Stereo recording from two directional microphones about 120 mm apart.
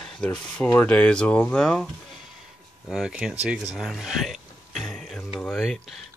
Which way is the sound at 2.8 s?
5° right (ahead or behind).